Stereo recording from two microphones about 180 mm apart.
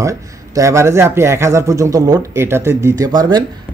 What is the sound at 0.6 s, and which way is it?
A man's voice, 15° right (ahead or behind).